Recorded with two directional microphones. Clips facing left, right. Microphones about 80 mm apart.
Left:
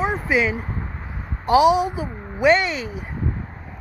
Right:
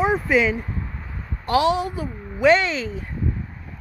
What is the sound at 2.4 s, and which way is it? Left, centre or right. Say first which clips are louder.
Speech: even; centre.